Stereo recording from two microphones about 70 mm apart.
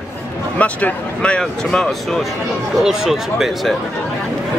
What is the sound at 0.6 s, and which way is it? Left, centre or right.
Speech, left.